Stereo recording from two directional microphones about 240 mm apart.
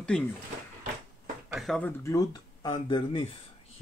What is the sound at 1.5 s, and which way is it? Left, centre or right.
Speech, centre.